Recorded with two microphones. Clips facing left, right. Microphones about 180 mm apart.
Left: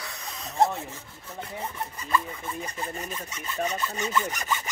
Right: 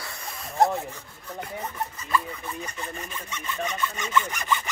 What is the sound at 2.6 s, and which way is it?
Sawing, 35° left (ahead or behind).